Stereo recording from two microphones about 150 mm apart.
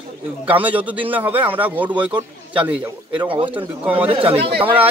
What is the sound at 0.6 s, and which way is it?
Speech, 10° right (ahead or behind).